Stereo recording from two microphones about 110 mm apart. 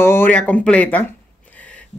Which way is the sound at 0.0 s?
20° left (ahead or behind).